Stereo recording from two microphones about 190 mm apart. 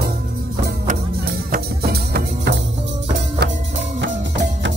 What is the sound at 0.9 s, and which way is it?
Music, 50° right (ahead or behind).